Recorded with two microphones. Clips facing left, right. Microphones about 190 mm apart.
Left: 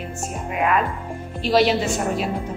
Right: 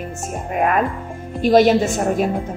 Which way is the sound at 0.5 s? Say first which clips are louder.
Right 3 dB; 45° right (ahead or behind).